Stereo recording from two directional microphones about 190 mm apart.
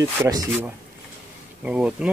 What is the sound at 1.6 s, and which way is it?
Speech, 5° right (ahead or behind).